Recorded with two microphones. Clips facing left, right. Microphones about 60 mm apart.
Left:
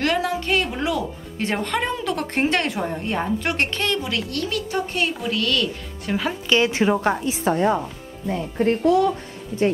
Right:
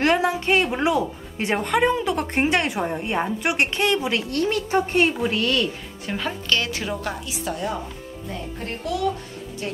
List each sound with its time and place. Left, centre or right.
0.0 s a woman's voice: right
6.0 s speech: centre
6.5 s a woman's voice: left